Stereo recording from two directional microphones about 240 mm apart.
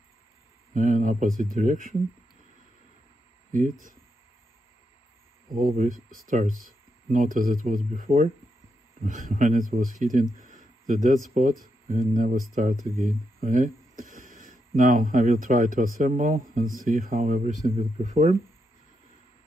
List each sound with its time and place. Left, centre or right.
0.7 s speech: right
5.5 s speech: right